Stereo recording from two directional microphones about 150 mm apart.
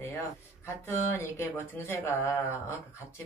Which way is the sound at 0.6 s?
15° left (ahead or behind).